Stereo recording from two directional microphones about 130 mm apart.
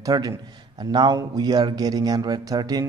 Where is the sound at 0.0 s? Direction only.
25° right (ahead or behind).